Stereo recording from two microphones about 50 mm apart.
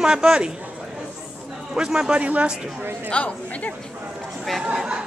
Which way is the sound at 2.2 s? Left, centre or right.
Right.